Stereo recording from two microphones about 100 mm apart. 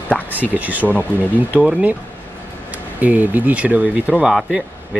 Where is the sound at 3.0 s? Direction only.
15° right (ahead or behind).